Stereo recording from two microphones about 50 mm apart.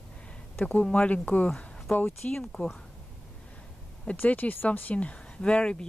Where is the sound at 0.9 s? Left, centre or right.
Left.